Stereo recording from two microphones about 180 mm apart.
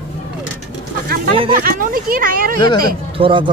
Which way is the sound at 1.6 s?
50° right (ahead or behind).